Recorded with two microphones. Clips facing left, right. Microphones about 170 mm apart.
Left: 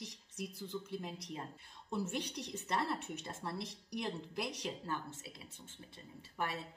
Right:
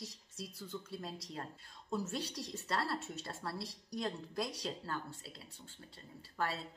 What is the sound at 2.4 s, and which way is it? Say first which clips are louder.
A woman's voice: left 1 dB; 20° left (ahead or behind).